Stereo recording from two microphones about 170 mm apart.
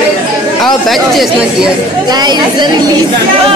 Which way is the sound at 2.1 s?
25° right (ahead or behind).